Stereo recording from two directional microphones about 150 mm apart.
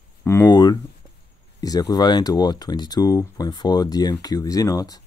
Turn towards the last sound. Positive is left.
turn(degrees=25)  # may be behind; listen again after turning